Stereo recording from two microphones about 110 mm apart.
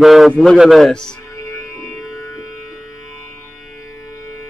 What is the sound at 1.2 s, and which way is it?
Music, 30° left (ahead or behind).